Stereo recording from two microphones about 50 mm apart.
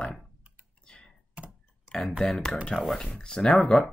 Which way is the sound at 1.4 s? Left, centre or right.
Right.